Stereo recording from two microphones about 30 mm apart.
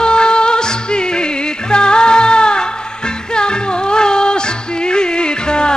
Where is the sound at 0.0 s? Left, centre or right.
Left.